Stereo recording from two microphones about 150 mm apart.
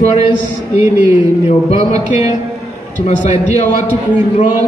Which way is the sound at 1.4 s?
50° left (ahead or behind).